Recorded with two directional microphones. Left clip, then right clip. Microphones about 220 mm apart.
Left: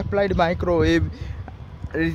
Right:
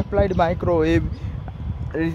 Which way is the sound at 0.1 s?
10° left (ahead or behind).